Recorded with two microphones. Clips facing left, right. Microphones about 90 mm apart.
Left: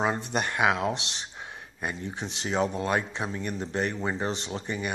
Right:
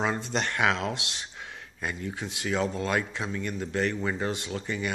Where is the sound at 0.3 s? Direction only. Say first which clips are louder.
Even; 15° left (ahead or behind).